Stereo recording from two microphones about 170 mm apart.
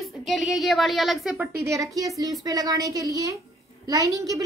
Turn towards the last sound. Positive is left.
turn(degrees=-20)  # may be behind; listen again after turning